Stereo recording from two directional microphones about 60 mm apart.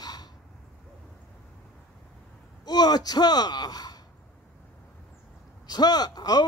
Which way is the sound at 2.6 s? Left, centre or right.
Left.